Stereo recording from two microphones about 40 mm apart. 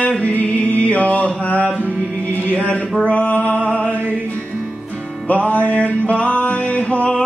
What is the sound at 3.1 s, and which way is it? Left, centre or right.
Music, left.